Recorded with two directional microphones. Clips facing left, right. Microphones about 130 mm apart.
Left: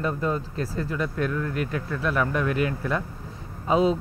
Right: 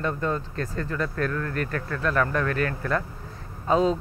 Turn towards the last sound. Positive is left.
turn(degrees=10)  # may be behind; listen again after turning